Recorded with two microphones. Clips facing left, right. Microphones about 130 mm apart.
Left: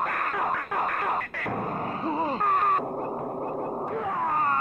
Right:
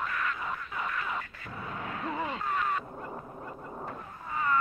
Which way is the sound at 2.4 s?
50° left (ahead or behind).